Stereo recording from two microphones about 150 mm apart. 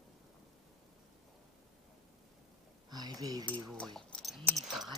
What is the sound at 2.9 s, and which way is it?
Speech, 25° right (ahead or behind).